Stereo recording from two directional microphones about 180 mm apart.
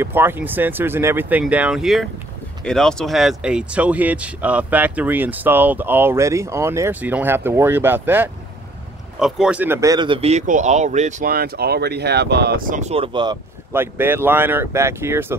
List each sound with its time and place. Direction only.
0.0 s speech: 10° right (ahead or behind)
13.7 s speech: 10° right (ahead or behind)